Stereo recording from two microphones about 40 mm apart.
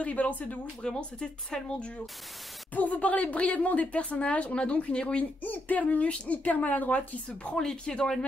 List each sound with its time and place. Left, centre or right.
0.0 s a woman's voice: left
0.8 s speech: centre
2.7 s a woman's voice: left
7.4 s speech: left